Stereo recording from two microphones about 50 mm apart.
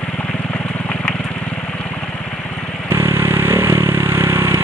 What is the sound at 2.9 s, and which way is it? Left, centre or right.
Vehicle, right.